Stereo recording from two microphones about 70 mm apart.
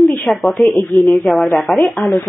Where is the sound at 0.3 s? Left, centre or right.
Centre.